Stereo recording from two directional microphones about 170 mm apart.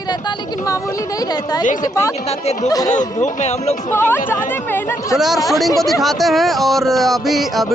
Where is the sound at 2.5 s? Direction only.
40° left (ahead or behind).